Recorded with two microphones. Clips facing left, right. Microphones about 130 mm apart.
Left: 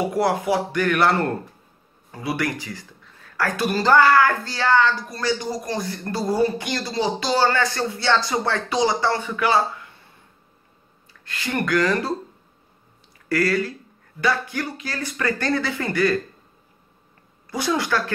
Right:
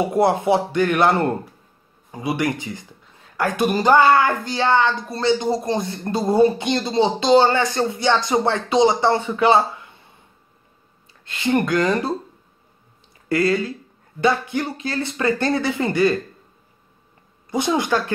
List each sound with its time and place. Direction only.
0.0 s speech: 25° right (ahead or behind)
11.2 s speech: 20° right (ahead or behind)
13.3 s speech: 20° right (ahead or behind)
17.5 s speech: 20° right (ahead or behind)